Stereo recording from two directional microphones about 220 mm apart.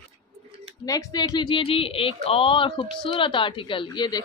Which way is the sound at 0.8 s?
15° left (ahead or behind).